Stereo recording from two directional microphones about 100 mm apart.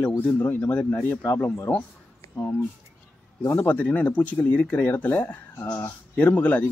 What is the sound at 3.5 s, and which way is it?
Speech, 20° left (ahead or behind).